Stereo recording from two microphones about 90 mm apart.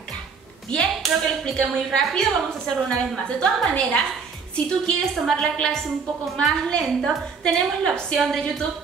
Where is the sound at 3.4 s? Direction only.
10° left (ahead or behind).